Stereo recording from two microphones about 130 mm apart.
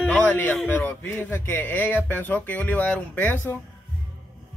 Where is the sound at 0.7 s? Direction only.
15° left (ahead or behind).